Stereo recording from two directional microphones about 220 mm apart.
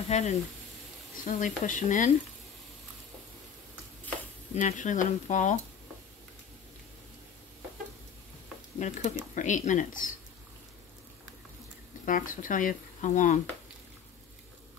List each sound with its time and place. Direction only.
0.1 s frying: 30° left (ahead or behind)
1.1 s speech: 35° left (ahead or behind)
4.6 s speech: 35° left (ahead or behind)
8.7 s speech: 35° left (ahead or behind)
12.1 s speech: 35° left (ahead or behind)